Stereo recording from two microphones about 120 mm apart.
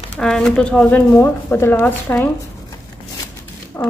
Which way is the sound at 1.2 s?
20° left (ahead or behind).